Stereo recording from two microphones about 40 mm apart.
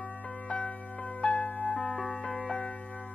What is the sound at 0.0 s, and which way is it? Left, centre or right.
Music, centre.